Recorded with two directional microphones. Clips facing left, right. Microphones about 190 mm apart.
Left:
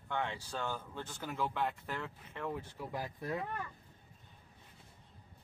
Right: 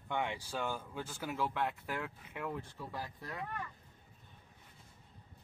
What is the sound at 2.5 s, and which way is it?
Speech, 15° left (ahead or behind).